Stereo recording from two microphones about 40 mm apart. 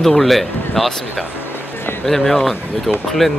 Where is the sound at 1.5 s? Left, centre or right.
Left.